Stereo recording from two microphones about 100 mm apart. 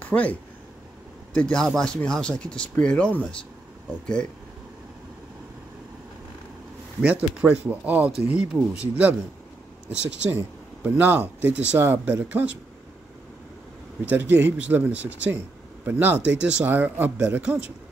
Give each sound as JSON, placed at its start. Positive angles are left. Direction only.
{"t": 0.0, "sound": "speech", "side_deg": 15}
{"t": 7.0, "sound": "speech", "side_deg": -10}
{"t": 14.0, "sound": "speech", "side_deg": -20}